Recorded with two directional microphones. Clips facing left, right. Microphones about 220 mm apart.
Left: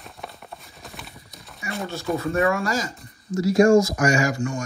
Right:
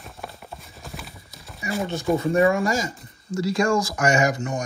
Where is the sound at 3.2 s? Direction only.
30° right (ahead or behind).